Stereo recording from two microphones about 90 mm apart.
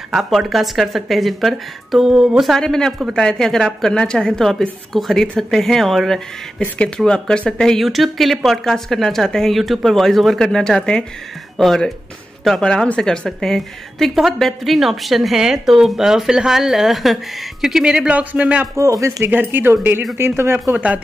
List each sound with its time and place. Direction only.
0.1 s a woman's voice: centre (ahead or behind)
18.8 s speech: 35° right (ahead or behind); by 21.0 s 20° right (ahead or behind)